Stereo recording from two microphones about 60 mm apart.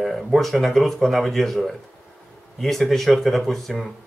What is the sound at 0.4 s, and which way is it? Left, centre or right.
Speech, centre.